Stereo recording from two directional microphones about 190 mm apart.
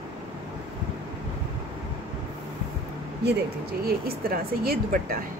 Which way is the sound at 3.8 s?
50° right (ahead or behind).